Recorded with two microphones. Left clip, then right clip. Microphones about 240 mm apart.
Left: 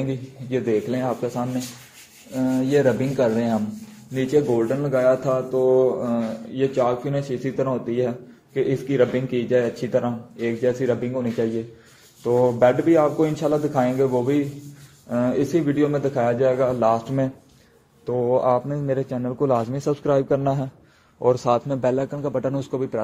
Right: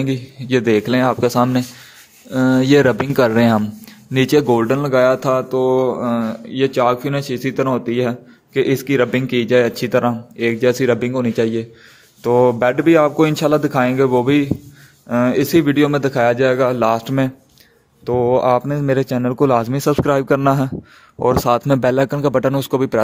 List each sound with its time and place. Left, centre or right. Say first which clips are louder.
0.0 s a man's voice: right 6 dB; right